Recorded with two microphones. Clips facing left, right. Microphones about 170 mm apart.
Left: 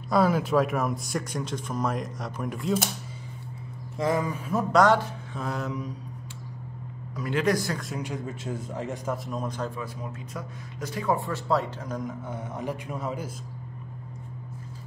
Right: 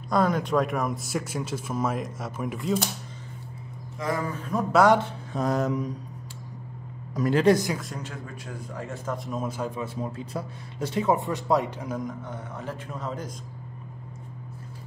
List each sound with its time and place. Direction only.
0.1 s speech: 5° left (ahead or behind)
4.0 s a man's voice: 20° left (ahead or behind)
4.5 s speech: 5° left (ahead or behind)
5.3 s mantra: 40° right (ahead or behind)
7.2 s speech: 40° right (ahead or behind)
7.4 s a man's voice: 20° right (ahead or behind)
7.9 s a man's voice: 15° left (ahead or behind)
9.1 s speech: centre (ahead or behind)
10.3 s speech: 30° right (ahead or behind)
12.0 s speech: centre (ahead or behind)
12.5 s a man's voice: 15° left (ahead or behind)